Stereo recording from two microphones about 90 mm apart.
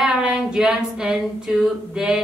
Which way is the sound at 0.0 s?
10° right (ahead or behind).